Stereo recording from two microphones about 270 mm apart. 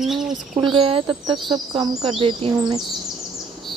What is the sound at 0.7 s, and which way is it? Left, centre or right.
A child's voice, centre.